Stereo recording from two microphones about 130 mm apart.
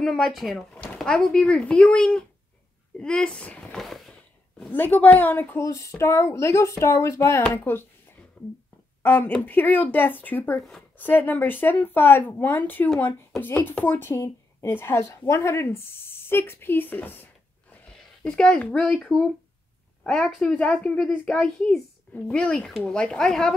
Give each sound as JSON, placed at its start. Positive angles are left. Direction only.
{"t": 0.0, "sound": "a woman's voice", "side_deg": 5}
{"t": 4.6, "sound": "speech", "side_deg": 15}
{"t": 8.4, "sound": "a sound", "side_deg": 10}
{"t": 9.0, "sound": "speech", "side_deg": 15}
{"t": 12.9, "sound": "speech", "side_deg": 5}
{"t": 13.4, "sound": "a woman's voice", "side_deg": 15}